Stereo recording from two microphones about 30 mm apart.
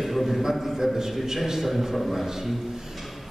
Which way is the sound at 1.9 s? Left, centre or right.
Centre.